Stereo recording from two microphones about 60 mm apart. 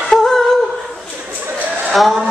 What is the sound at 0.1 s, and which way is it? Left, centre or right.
Humming, centre.